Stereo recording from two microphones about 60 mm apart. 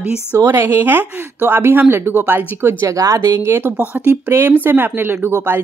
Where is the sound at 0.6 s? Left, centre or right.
Right.